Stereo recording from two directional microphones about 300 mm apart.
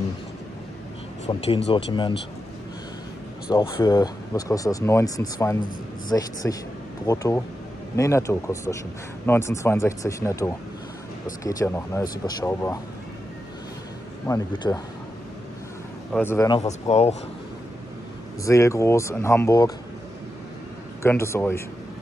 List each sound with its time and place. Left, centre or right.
1.7 s speech: centre
3.5 s speech: centre
14.2 s speech: centre
16.1 s speech: centre
18.4 s speech: centre
21.0 s speech: centre